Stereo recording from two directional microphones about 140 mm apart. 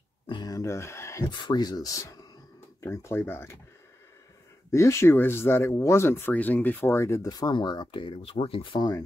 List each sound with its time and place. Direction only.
0.3 s speech: 30° left (ahead or behind)
1.3 s speech: 30° left (ahead or behind)
4.6 s speech: 20° left (ahead or behind)